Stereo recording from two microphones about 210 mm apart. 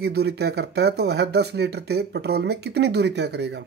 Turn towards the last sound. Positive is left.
turn(degrees=-55)  # may be behind; listen again after turning